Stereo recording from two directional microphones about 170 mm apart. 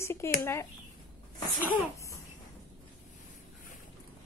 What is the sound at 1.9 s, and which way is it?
Cough, 20° left (ahead or behind).